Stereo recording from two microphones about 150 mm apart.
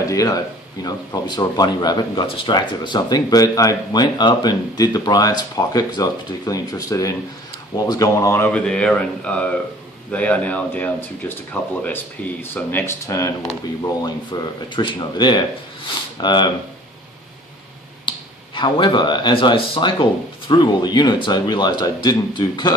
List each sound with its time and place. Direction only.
0.1 s speech: 20° left (ahead or behind)
18.0 s speech: 30° left (ahead or behind)